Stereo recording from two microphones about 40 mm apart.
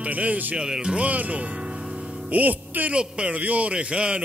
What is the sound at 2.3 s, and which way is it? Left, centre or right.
Music, right.